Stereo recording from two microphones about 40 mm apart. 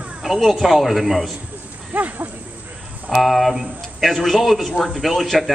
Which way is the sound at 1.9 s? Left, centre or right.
Right.